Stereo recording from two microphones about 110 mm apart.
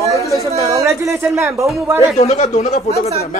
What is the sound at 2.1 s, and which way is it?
Speech, 80° left.